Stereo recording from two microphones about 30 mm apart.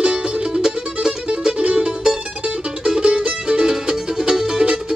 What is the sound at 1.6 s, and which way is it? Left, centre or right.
Music, right.